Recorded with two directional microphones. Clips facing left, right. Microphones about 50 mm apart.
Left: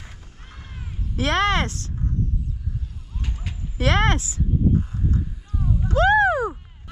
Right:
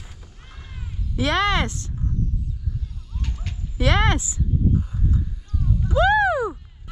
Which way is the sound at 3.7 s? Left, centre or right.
Left.